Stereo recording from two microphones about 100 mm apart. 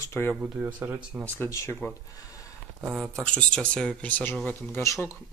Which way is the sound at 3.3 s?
10° left (ahead or behind).